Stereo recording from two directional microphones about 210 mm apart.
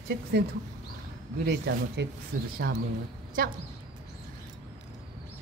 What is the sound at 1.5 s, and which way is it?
Speech, 55° right (ahead or behind).